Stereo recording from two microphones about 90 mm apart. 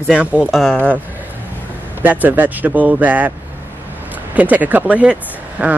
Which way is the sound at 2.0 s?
20° right (ahead or behind).